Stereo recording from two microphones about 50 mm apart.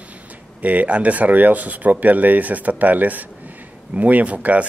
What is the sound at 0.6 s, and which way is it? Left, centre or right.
Speech, right.